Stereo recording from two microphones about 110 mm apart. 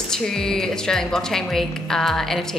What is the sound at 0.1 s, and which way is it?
A woman's voice, 5° left (ahead or behind).